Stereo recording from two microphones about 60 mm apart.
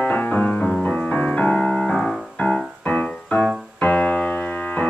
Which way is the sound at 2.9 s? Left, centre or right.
Left.